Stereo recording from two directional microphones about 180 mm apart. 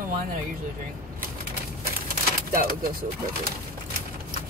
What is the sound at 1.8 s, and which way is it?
Pigeon, 55° right (ahead or behind).